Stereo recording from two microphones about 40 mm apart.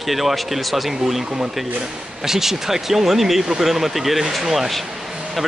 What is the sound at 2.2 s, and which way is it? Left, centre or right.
Speech, centre.